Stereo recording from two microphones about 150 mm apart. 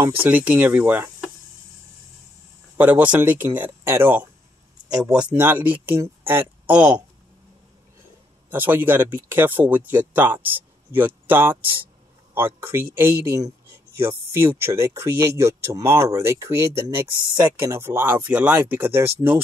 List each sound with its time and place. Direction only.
0.2 s speech: 10° right (ahead or behind)
2.8 s speech: 10° right (ahead or behind)
5.3 s speech: 10° right (ahead or behind)
8.5 s a woman's voice: 15° right (ahead or behind)